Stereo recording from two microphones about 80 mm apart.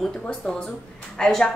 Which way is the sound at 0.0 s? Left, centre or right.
Centre.